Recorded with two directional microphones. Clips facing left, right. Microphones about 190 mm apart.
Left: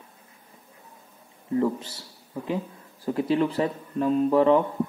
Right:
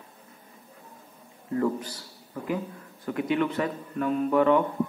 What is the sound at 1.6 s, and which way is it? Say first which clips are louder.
A man's voice: left 1 dB; 25° left (ahead or behind).